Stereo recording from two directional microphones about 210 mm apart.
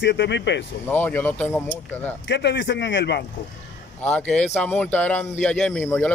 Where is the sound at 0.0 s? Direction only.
55° left (ahead or behind).